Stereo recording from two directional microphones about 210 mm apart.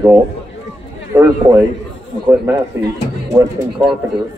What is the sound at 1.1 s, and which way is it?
Speech, 15° right (ahead or behind).